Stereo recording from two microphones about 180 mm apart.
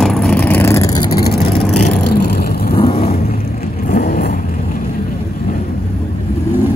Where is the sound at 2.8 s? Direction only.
35° left (ahead or behind).